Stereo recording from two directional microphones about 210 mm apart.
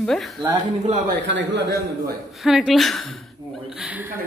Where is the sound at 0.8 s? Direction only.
40° right (ahead or behind).